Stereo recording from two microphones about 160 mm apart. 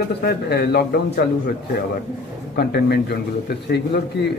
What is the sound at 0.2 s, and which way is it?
A man's voice, 80° left.